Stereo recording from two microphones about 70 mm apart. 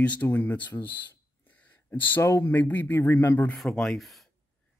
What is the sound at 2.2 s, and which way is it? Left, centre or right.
Speech, left.